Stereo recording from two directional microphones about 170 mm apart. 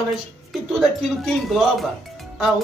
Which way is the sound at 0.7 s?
Centre (ahead or behind).